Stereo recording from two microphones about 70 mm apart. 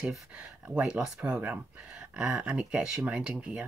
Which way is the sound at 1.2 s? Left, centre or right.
Right.